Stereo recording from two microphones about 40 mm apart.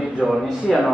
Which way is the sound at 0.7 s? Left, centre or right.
Centre.